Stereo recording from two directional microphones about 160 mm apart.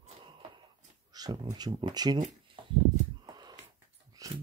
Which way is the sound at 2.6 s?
30° right (ahead or behind).